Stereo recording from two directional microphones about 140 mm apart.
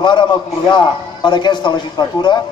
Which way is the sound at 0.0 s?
35° left (ahead or behind).